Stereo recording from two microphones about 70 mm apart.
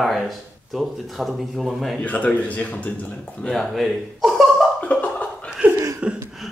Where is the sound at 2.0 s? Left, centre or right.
Left.